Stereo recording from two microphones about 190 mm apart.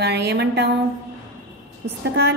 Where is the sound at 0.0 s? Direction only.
60° right (ahead or behind).